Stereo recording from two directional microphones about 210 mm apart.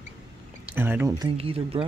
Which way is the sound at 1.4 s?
25° right (ahead or behind).